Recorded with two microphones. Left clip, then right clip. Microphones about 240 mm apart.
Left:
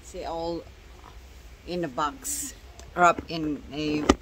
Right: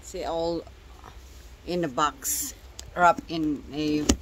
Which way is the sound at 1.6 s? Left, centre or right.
Right.